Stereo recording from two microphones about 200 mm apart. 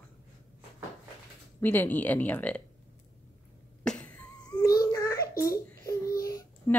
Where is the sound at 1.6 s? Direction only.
10° left (ahead or behind).